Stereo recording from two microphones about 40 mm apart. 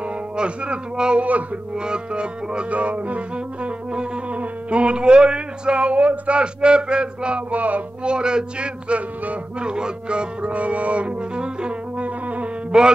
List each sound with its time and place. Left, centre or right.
0.4 s music: right
2.7 s music: right
7.5 s music: right
8.0 s music: right
12.7 s mantra: centre